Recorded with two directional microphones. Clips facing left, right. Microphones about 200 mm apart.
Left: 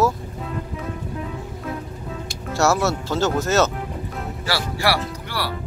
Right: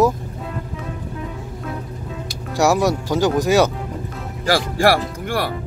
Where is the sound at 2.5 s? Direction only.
15° right (ahead or behind).